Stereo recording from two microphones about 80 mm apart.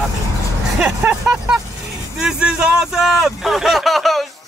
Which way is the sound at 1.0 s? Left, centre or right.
Centre.